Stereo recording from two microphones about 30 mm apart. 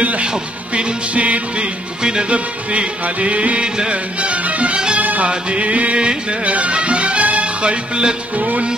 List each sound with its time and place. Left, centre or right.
0.2 s music: right
1.2 s music: right
5.9 s music: right
7.9 s music: right
8.4 s music: right